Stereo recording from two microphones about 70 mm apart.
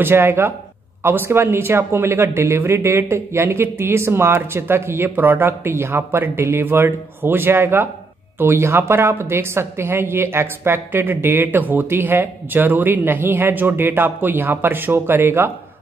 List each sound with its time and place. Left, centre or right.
0.0 s a woman's voice: right